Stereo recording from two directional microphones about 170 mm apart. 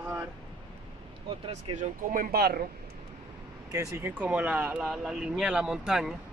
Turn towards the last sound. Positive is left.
turn(degrees=-5)  # may be behind; listen again after turning